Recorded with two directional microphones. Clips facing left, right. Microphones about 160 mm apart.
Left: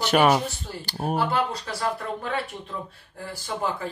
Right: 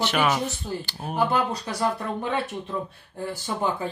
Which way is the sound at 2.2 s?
20° right (ahead or behind).